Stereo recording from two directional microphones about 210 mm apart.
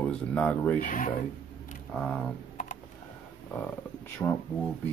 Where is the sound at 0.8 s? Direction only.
40° left (ahead or behind).